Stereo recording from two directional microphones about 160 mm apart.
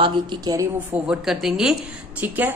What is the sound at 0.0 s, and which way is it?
Speech, 25° right (ahead or behind).